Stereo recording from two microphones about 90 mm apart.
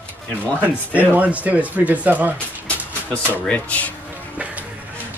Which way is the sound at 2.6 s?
15° left (ahead or behind).